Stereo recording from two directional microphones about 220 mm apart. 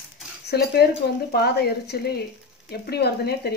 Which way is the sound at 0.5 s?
45° left (ahead or behind).